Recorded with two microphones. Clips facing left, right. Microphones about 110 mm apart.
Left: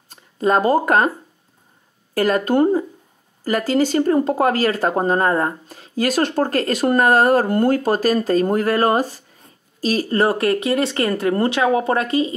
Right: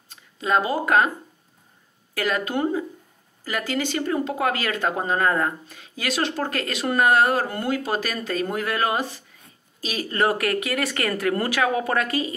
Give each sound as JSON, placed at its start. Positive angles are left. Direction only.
{"t": 0.1, "sound": "speech", "side_deg": 45}
{"t": 2.1, "sound": "speech", "side_deg": 40}